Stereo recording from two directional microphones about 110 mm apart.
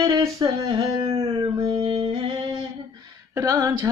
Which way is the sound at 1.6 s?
55° right (ahead or behind).